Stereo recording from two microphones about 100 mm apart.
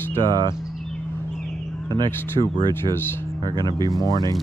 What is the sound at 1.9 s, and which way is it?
Speech, 50° right (ahead or behind).